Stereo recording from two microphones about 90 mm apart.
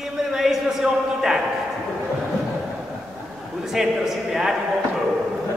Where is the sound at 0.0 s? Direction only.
5° right (ahead or behind).